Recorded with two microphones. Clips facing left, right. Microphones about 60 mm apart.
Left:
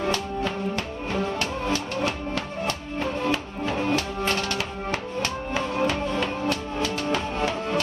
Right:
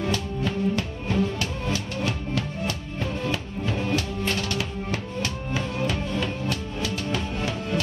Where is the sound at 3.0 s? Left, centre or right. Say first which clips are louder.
Left 3 dB; left.